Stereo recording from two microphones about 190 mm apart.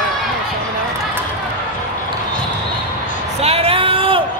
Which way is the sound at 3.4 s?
30° right (ahead or behind).